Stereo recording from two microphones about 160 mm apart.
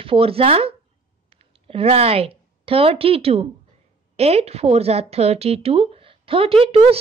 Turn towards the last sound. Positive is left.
turn(degrees=-40)  # may be behind; listen again after turning